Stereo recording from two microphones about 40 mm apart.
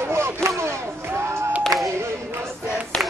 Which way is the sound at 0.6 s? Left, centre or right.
Right.